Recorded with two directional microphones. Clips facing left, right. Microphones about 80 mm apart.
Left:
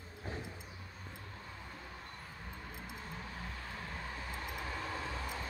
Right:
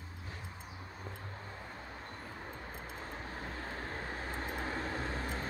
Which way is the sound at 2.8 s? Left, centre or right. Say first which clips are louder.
Right 2 dB; right.